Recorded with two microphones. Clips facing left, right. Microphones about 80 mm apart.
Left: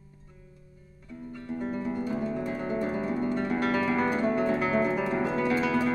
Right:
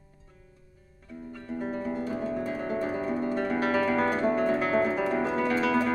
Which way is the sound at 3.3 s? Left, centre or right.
Right.